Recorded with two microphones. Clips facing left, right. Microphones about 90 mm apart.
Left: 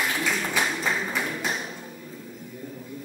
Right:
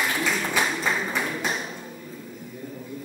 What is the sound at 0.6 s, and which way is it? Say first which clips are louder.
Clapping: right 1 dB; 20° right (ahead or behind).